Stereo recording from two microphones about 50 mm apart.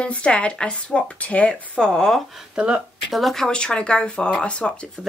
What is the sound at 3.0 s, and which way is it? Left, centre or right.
Speech, centre.